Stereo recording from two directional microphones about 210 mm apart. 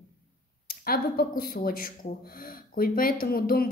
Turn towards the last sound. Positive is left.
turn(degrees=45)  # may be behind; listen again after turning